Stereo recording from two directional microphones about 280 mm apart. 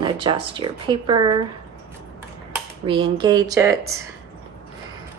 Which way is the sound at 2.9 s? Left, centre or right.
Centre.